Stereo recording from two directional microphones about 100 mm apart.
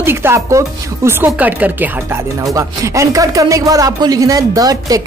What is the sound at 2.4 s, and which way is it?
Speech, 35° right (ahead or behind).